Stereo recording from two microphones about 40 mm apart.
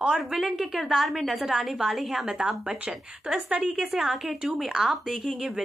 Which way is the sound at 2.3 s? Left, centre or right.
Right.